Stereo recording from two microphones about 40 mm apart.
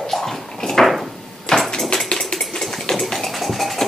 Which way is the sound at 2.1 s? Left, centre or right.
Centre.